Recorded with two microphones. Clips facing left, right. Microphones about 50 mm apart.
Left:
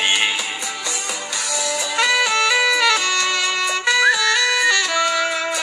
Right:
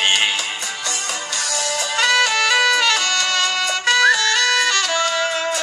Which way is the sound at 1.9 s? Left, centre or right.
Right.